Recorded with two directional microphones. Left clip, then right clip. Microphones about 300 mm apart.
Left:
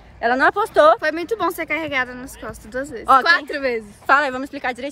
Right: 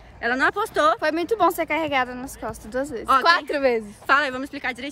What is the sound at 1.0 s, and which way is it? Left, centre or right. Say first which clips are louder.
A woman's voice: right 1 dB; centre.